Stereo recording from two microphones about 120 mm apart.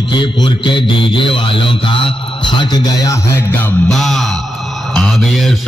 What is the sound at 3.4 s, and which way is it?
Music, 15° left (ahead or behind).